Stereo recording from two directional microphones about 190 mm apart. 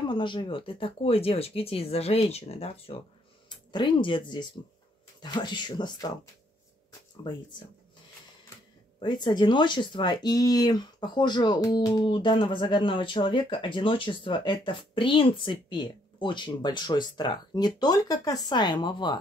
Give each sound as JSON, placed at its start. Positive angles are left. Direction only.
{"t": 0.0, "sound": "speech", "side_deg": 25}
{"t": 7.2, "sound": "speech", "side_deg": 25}
{"t": 9.0, "sound": "speech", "side_deg": 25}